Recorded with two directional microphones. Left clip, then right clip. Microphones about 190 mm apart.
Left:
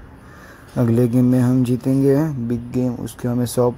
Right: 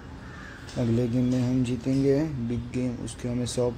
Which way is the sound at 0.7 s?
40° left (ahead or behind).